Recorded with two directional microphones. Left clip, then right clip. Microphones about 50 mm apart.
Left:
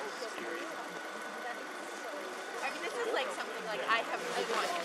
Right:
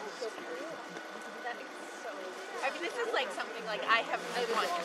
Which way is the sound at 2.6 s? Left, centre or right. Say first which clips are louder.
Right 2 dB; right.